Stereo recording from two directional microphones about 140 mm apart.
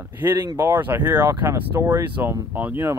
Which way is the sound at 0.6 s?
15° right (ahead or behind).